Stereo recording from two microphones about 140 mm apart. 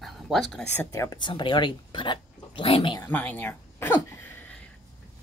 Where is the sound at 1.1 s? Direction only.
35° left (ahead or behind).